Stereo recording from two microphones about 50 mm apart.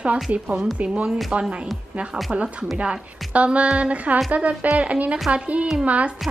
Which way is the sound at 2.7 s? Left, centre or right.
Right.